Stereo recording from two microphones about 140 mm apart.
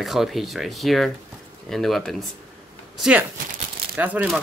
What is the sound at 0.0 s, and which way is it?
Speech, centre (ahead or behind).